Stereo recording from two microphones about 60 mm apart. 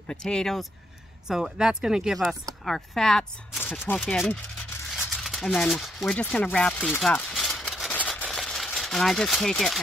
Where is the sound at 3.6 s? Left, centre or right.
Left.